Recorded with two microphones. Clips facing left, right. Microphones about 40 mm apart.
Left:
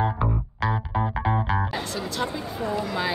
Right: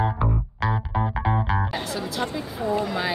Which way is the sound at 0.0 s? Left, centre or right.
Centre.